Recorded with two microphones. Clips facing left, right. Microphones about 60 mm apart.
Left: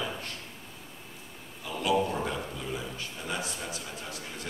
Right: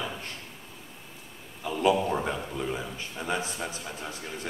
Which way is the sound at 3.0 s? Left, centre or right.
Right.